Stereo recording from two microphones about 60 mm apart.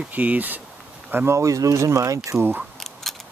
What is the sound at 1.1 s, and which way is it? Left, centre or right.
Speech, right.